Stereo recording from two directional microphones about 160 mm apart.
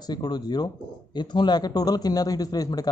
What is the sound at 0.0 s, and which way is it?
Speech, 25° left (ahead or behind).